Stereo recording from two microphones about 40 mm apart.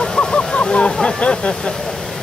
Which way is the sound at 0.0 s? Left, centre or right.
Centre.